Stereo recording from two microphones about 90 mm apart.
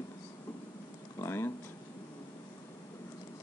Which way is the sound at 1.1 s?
30° left (ahead or behind).